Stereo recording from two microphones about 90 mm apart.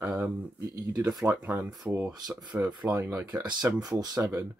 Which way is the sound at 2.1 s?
45° right (ahead or behind).